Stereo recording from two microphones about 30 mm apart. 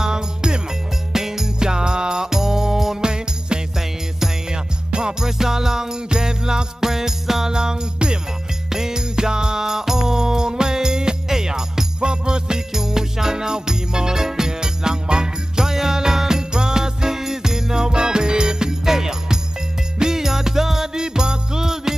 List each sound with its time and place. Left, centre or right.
0.0 s music: right
1.1 s music: centre
1.6 s music: right
3.0 s music: right
4.9 s music: right
7.5 s jingle bell: right
12.7 s music: centre
20.9 s jingle bell: right